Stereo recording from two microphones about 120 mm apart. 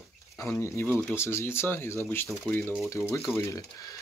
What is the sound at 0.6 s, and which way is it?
Speech, 15° left (ahead or behind).